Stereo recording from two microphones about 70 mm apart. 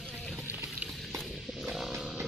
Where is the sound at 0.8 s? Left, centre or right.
Centre.